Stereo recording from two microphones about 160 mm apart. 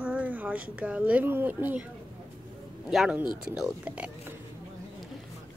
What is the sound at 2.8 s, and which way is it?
A woman's voice, 5° right (ahead or behind).